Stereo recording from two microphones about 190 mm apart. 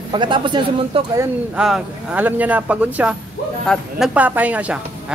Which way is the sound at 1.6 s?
5° right (ahead or behind).